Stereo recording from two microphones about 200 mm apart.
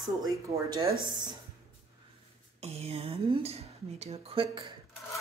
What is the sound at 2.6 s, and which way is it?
A woman's voice, 30° right (ahead or behind).